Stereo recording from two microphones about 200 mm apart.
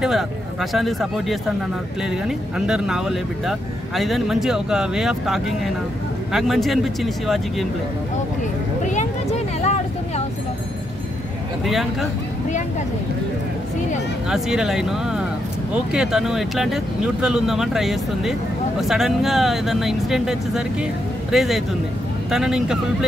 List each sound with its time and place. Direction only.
0.0 s speech: centre (ahead or behind)
8.8 s vehicle: 35° left (ahead or behind)
11.6 s speech: centre (ahead or behind)
14.3 s speech: centre (ahead or behind)